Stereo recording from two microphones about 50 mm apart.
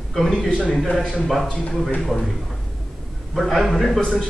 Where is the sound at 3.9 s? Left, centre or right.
Centre.